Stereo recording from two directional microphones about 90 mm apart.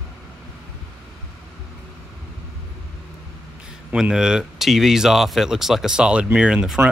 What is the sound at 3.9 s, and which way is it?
Speech, 10° right (ahead or behind).